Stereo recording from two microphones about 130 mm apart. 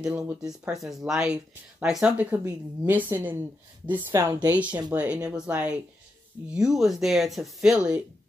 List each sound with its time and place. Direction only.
0.0 s speech: 10° right (ahead or behind)
4.5 s speech: 10° right (ahead or behind)